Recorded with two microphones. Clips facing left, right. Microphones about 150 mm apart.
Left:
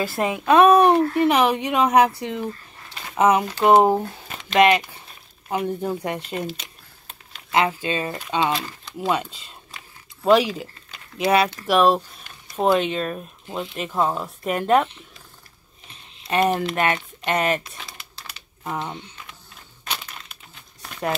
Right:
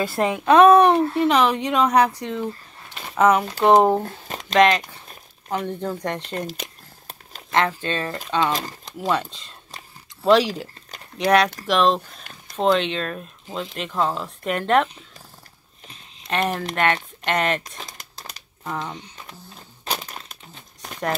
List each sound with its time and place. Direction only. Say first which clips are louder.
0.5 s speech: right 1 dB; 15° left (ahead or behind)
4.0 s squish: right 1 dB; 40° right (ahead or behind)
4.6 s speech: even; 10° left (ahead or behind)
7.5 s speech: left 1 dB; 10° left (ahead or behind)
16.3 s speech: left 4 dB; 10° left (ahead or behind)
17.7 s typing: right 2 dB; 40° right (ahead or behind)
18.8 s speech: left 1 dB; centre (ahead or behind)
19.8 s crumpling: right 4 dB; 35° right (ahead or behind)